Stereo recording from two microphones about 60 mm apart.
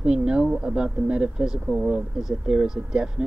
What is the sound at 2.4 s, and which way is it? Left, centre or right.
Speech, centre.